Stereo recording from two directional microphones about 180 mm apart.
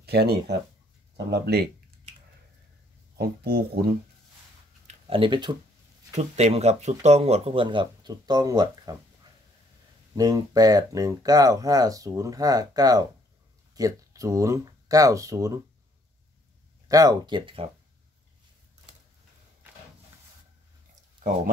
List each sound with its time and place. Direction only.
0.0 s speech: 65° right (ahead or behind)
3.2 s speech: 60° right (ahead or behind)
4.8 s speech: 30° right (ahead or behind)
6.1 s speech: 35° right (ahead or behind); by 15.6 s 20° right (ahead or behind)
16.8 s speech: 20° right (ahead or behind)